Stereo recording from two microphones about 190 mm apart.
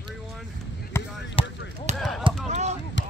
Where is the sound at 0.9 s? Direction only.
15° left (ahead or behind).